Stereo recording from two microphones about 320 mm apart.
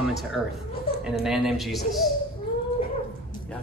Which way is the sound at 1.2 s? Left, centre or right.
Centre.